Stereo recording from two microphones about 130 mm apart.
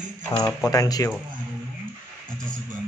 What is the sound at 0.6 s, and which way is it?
Speech, 30° left (ahead or behind).